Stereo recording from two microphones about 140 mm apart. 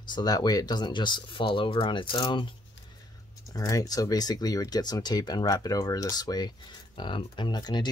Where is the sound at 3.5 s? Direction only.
25° left (ahead or behind).